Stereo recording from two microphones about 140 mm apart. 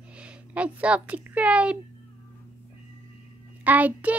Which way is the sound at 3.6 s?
10° right (ahead or behind).